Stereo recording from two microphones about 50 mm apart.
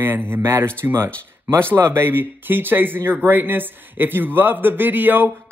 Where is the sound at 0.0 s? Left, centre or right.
Right.